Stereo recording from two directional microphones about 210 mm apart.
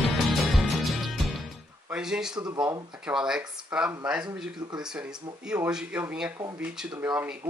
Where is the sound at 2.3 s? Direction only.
20° right (ahead or behind).